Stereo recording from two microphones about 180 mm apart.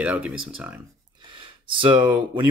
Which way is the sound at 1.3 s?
30° right (ahead or behind).